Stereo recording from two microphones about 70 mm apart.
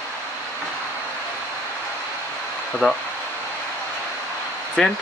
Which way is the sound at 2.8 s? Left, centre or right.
Centre.